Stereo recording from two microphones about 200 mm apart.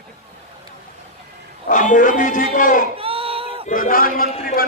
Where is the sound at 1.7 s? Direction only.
40° left (ahead or behind).